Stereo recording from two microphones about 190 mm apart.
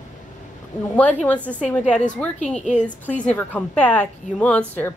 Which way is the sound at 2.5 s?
40° left (ahead or behind).